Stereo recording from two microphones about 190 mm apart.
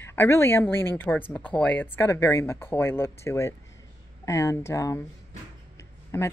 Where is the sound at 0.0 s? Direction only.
15° left (ahead or behind).